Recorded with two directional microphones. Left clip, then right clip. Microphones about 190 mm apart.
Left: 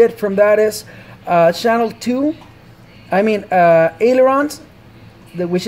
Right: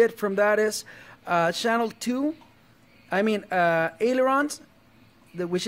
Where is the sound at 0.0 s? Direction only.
30° right (ahead or behind).